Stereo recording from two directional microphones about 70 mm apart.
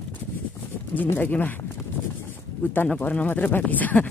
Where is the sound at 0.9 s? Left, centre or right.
Left.